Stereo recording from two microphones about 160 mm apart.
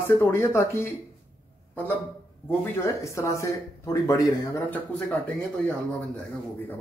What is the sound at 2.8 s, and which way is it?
Speech, 20° left (ahead or behind).